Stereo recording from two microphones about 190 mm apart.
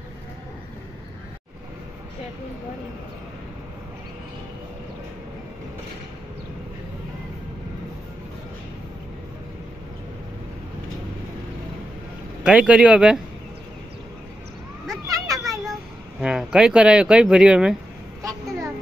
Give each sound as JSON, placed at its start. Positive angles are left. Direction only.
{"t": 12.4, "sound": "speech", "side_deg": -5}
{"t": 15.0, "sound": "children playing", "side_deg": -20}
{"t": 16.2, "sound": "speech", "side_deg": -5}